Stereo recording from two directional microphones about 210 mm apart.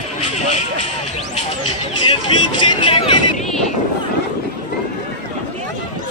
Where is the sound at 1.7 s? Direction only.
20° left (ahead or behind).